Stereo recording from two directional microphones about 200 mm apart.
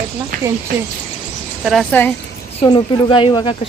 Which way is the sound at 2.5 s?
25° left (ahead or behind).